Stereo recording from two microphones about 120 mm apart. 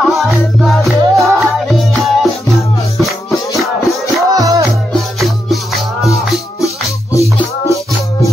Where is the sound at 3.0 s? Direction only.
Centre (ahead or behind).